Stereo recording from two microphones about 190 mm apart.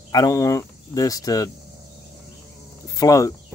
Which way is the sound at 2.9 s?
15° left (ahead or behind).